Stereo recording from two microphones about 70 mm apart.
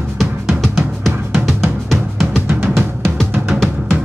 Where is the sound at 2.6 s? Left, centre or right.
Right.